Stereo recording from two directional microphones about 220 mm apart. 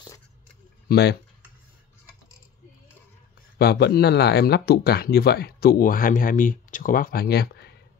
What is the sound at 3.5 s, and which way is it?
Speech, 45° left (ahead or behind).